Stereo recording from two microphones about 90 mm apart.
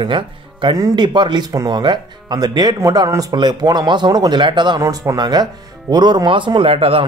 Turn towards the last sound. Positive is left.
turn(degrees=-90)